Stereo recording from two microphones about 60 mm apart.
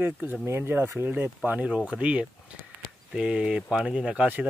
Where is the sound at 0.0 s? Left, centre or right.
Right.